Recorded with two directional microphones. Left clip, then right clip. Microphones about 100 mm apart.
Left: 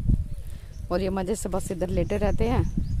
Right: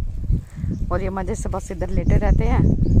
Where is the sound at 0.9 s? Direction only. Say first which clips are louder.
Right 1 dB; 30° left (ahead or behind).